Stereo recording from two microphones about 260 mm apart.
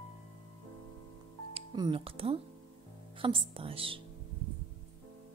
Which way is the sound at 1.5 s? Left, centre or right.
Centre.